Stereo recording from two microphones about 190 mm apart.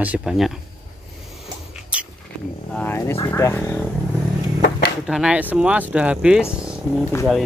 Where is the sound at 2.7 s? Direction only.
15° left (ahead or behind).